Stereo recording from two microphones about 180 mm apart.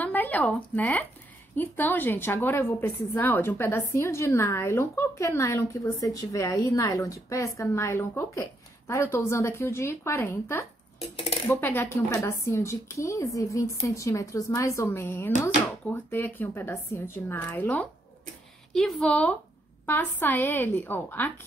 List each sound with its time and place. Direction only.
0.0 s a woman's voice: 10° left (ahead or behind)
11.0 s speech: 30° left (ahead or behind)
11.4 s a woman's voice: 10° left (ahead or behind)